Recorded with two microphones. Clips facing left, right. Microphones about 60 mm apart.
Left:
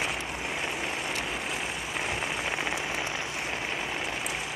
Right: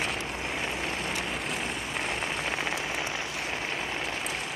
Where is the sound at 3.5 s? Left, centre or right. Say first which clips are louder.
Even; centre.